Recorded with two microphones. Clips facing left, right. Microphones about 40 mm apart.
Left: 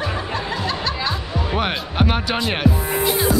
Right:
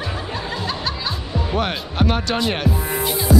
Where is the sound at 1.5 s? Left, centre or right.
Centre.